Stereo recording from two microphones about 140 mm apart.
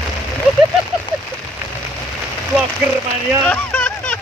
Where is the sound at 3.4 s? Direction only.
10° left (ahead or behind).